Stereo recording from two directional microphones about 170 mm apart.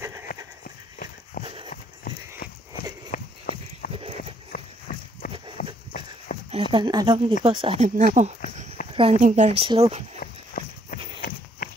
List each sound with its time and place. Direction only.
0.0 s horse: 15° right (ahead or behind)
1.4 s clip-clop: 30° right (ahead or behind)
1.7 s horse: 60° left (ahead or behind)
3.1 s horse: 50° left (ahead or behind)
6.3 s a sound: 55° left (ahead or behind)
6.7 s speech: 25° right (ahead or behind); by 8.3 s 45° right (ahead or behind)
8.9 s a woman's voice: 30° right (ahead or behind)
9.2 s speech: 45° right (ahead or behind)
10.2 s horse: 60° left (ahead or behind)